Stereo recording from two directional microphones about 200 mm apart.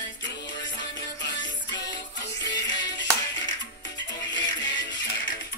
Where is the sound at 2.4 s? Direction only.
65° left (ahead or behind).